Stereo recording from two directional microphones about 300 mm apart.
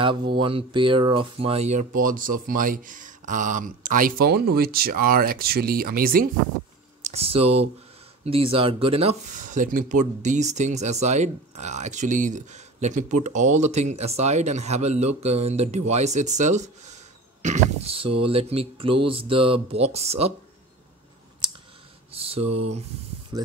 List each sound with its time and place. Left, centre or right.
0.0 s mantra: centre
0.4 s speech: centre
22.1 s a sound: centre